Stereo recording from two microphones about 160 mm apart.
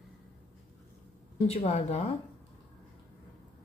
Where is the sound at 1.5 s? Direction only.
40° left (ahead or behind).